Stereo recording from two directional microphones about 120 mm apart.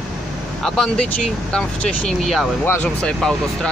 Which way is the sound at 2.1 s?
Centre (ahead or behind).